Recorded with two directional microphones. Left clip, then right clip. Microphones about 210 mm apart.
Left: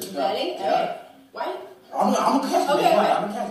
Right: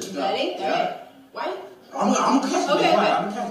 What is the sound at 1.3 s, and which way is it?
Chuckle, 25° right (ahead or behind).